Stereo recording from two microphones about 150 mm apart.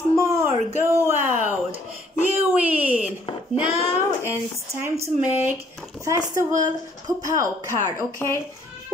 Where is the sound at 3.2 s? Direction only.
30° left (ahead or behind).